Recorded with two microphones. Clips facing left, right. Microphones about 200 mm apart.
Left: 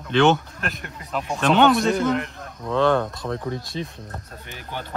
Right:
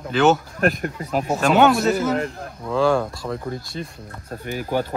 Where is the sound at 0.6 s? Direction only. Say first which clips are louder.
Right 11 dB; 45° right (ahead or behind).